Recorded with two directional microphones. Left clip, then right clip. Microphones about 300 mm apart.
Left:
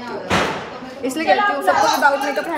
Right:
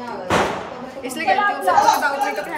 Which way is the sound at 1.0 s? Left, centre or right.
Centre.